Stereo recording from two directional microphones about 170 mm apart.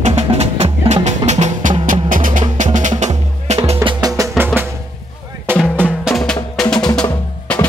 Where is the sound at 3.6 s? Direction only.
35° right (ahead or behind).